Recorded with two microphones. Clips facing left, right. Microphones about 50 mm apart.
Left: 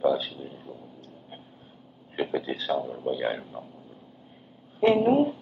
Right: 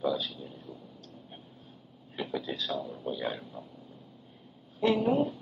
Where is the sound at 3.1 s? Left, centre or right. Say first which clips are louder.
Left 6 dB; left.